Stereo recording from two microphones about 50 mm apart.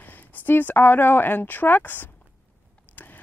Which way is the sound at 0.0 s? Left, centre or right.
Left.